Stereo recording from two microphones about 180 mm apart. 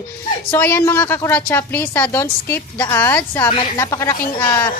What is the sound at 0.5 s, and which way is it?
A woman's voice, 10° left (ahead or behind).